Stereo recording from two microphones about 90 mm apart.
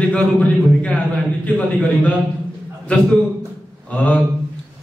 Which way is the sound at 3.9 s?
15° left (ahead or behind).